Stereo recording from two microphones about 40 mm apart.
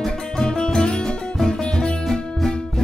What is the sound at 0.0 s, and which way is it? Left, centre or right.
Music, centre.